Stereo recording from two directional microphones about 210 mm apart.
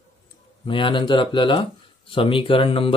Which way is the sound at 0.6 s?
25° left (ahead or behind).